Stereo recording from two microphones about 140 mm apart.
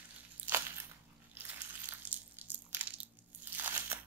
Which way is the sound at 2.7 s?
15° right (ahead or behind).